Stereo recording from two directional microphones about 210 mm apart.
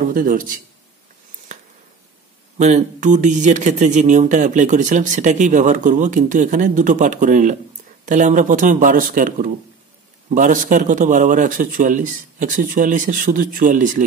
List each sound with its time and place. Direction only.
0.1 s speech: 40° right (ahead or behind)
2.6 s speech: 35° right (ahead or behind)